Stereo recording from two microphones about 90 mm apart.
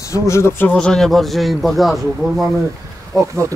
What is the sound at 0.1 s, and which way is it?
Speech, 35° left (ahead or behind).